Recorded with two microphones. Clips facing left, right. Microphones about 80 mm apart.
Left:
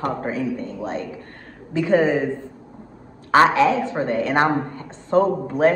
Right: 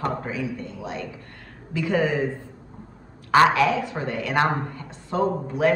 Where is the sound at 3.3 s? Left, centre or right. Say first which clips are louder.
Left 2 dB; left.